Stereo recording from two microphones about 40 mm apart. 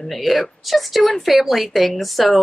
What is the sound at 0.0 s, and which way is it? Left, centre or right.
Speech, centre.